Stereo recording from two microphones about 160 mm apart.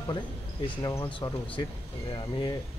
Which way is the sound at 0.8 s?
15° left (ahead or behind).